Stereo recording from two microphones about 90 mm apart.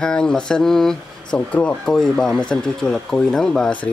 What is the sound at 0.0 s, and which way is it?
Speech, 5° left (ahead or behind).